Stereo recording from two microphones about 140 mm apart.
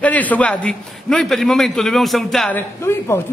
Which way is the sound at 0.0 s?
10° left (ahead or behind).